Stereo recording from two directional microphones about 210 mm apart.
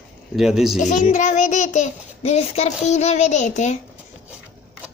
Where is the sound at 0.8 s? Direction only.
35° left (ahead or behind).